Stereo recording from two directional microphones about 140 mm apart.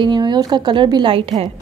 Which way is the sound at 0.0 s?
30° right (ahead or behind).